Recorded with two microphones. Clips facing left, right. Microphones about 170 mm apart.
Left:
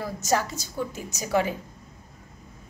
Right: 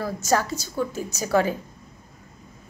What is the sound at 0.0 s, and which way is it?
Speech, 15° left (ahead or behind).